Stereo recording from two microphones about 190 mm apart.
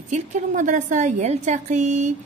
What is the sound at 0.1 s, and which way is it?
A woman's voice, 40° right (ahead or behind).